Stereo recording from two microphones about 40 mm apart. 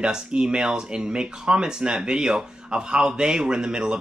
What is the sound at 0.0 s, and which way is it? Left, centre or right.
Speech, right.